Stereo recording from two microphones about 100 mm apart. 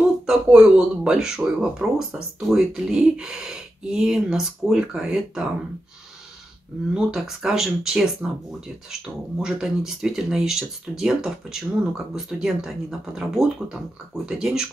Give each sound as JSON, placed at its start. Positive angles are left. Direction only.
{"t": 0.3, "sound": "speech", "side_deg": -5}
{"t": 6.9, "sound": "speech", "side_deg": -5}